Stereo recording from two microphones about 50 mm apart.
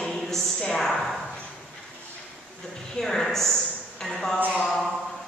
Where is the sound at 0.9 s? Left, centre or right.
Centre.